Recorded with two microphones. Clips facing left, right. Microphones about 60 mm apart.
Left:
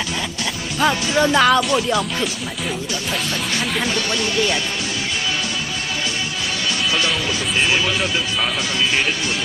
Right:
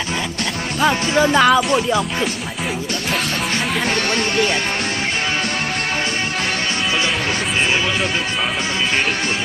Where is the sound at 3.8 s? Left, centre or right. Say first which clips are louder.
Right 2 dB; right.